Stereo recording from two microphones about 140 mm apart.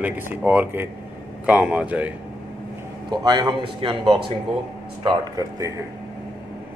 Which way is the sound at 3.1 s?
35° right (ahead or behind).